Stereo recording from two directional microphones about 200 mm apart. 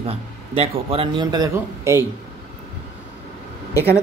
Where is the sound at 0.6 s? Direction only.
30° right (ahead or behind).